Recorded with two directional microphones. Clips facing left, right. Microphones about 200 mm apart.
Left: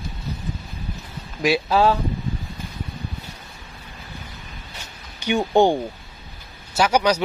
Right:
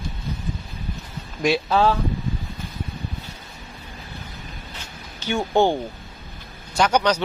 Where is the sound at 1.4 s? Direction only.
5° left (ahead or behind).